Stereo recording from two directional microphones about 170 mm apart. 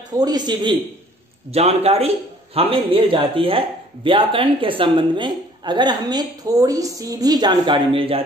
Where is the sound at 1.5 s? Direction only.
35° right (ahead or behind).